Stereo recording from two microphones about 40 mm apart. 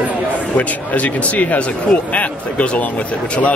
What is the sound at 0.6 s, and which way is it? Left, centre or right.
Speech, left.